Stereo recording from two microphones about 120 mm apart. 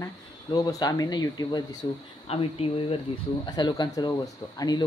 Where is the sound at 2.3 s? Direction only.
55° left (ahead or behind).